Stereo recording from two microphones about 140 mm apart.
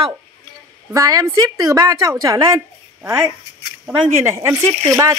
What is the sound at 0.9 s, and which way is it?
A woman's voice, 25° right (ahead or behind).